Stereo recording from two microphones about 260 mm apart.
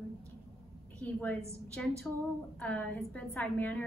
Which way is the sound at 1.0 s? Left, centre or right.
Centre.